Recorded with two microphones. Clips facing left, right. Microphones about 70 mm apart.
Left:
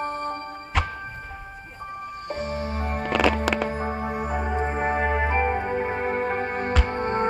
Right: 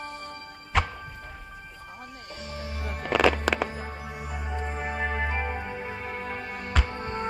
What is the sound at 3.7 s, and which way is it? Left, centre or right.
Music, left.